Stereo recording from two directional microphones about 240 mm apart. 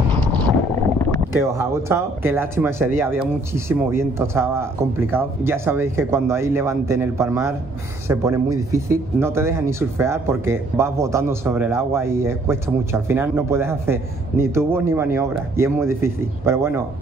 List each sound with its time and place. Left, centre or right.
0.1 s boat: centre
1.4 s speech: centre